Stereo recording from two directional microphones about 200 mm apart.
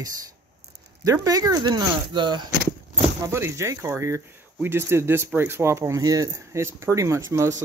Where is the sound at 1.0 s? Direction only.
15° right (ahead or behind).